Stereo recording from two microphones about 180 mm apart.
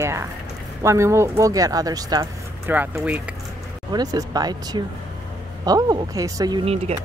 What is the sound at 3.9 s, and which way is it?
Speech, 20° right (ahead or behind).